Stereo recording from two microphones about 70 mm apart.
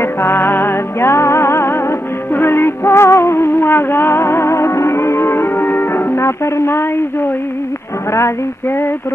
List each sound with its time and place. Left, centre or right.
0.0 s music: left
8.1 s female singing: left